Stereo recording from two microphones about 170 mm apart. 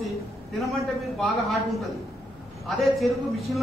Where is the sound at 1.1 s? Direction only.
Centre (ahead or behind).